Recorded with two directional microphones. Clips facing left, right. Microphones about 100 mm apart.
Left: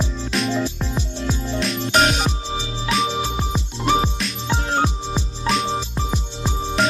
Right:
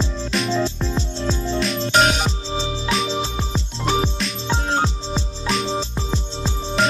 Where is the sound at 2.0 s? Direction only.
Centre (ahead or behind).